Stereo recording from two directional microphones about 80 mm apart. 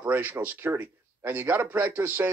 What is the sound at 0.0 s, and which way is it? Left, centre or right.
Speech, right.